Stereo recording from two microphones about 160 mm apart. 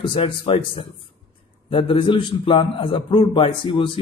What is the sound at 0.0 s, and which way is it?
A man's voice, 30° left (ahead or behind).